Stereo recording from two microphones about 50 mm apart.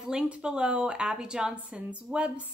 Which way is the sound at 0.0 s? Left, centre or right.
Centre.